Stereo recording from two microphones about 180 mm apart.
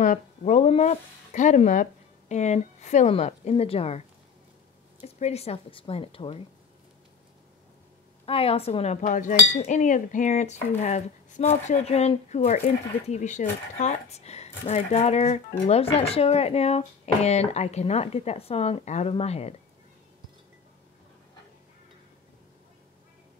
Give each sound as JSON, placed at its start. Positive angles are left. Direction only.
{"t": 0.0, "sound": "speech", "side_deg": 45}
{"t": 5.0, "sound": "speech", "side_deg": 35}
{"t": 8.3, "sound": "speech", "side_deg": 30}